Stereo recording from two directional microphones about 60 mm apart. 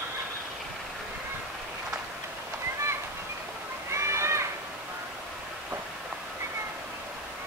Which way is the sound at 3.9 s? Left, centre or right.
Right.